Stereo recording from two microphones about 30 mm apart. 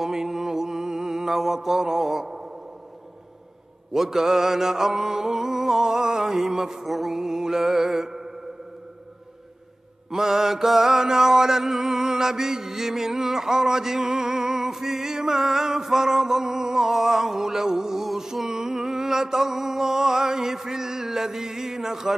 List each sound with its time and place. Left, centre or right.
0.0 s mantra: centre
3.9 s mantra: centre
6.8 s mantra: centre
7.2 s mantra: centre
10.1 s mantra: centre